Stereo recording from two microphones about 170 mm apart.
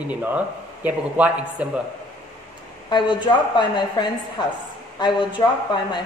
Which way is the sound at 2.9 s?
25° left (ahead or behind).